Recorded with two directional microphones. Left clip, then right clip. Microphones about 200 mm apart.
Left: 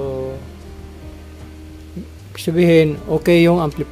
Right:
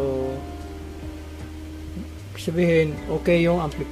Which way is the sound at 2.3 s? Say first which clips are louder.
Left 7 dB; 60° left (ahead or behind).